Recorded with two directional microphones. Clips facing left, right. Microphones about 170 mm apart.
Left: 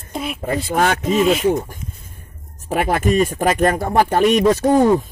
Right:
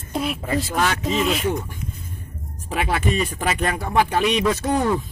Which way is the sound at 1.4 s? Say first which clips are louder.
Left 6 dB; 40° left (ahead or behind).